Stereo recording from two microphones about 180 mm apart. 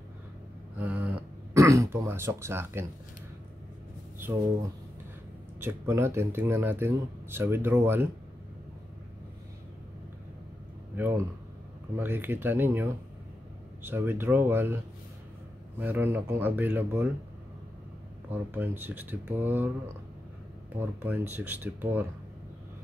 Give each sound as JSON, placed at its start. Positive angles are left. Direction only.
{"t": 0.7, "sound": "throat clearing", "side_deg": -10}
{"t": 5.6, "sound": "speech", "side_deg": -15}
{"t": 11.0, "sound": "speech", "side_deg": -10}
{"t": 15.8, "sound": "speech", "side_deg": -10}
{"t": 18.3, "sound": "speech", "side_deg": -10}
{"t": 20.7, "sound": "speech", "side_deg": -10}